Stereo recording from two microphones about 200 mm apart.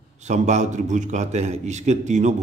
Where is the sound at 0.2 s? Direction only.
35° right (ahead or behind).